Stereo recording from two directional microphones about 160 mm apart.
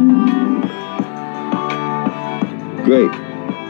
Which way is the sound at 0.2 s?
35° left (ahead or behind).